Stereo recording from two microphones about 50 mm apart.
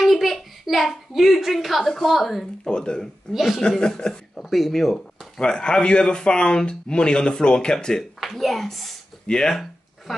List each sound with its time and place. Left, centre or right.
0.0 s a child's voice: centre
2.6 s speech: centre
3.3 s speech: centre
3.8 s speech: centre
4.5 s speech: centre
5.4 s speech: centre
8.2 s speech: centre